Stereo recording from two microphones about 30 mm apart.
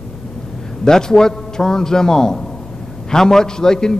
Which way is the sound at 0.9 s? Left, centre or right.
Left.